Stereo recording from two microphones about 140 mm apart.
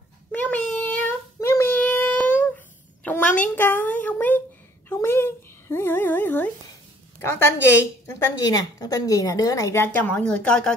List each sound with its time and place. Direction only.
0.3 s child singing: 10° left (ahead or behind)
3.0 s a sound: 15° left (ahead or behind)
7.2 s a woman's voice: 15° left (ahead or behind)
8.4 s a woman's voice: 25° left (ahead or behind); by 10.7 s 10° left (ahead or behind)